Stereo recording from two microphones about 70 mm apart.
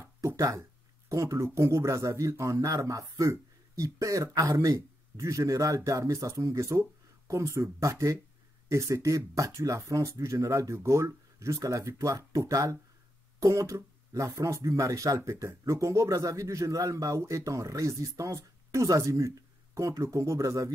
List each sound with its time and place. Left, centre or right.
0.6 s speech: right